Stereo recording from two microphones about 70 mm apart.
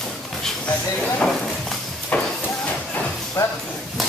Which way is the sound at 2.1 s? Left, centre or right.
Left.